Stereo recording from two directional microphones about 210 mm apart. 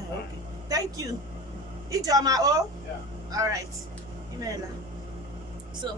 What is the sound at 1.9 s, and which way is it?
A woman's voice, 15° right (ahead or behind).